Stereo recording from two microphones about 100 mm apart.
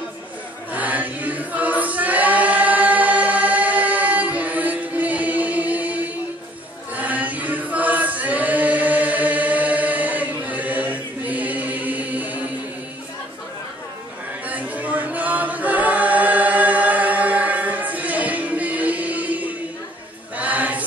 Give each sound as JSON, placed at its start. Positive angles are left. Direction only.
{"t": 0.7, "sound": "choir", "side_deg": -15}
{"t": 7.0, "sound": "choir", "side_deg": -15}
{"t": 14.5, "sound": "choir", "side_deg": -15}